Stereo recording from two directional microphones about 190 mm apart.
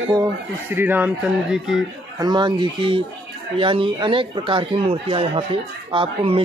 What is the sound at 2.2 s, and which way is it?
Speech, 25° right (ahead or behind).